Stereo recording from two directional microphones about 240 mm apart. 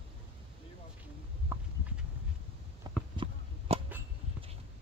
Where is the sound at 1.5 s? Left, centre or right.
Centre.